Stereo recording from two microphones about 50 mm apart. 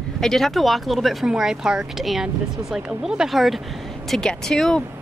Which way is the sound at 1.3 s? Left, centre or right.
Centre.